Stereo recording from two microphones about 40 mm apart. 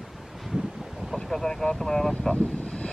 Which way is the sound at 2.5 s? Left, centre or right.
Left.